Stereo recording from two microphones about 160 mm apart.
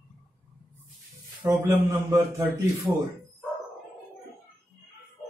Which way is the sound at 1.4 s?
15° right (ahead or behind).